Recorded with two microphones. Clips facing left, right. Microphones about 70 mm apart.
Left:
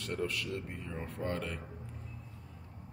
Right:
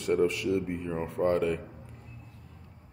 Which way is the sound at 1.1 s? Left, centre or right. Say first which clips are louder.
Right 12 dB; centre.